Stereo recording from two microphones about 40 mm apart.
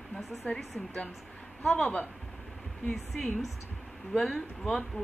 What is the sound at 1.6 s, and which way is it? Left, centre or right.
Speech, centre.